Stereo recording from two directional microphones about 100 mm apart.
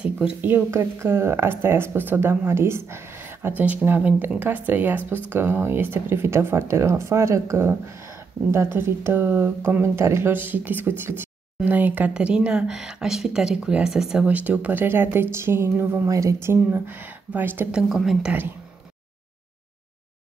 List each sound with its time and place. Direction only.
0.0 s speech: 10° right (ahead or behind)
16.1 s speech: 35° right (ahead or behind)
17.7 s speech: 5° right (ahead or behind)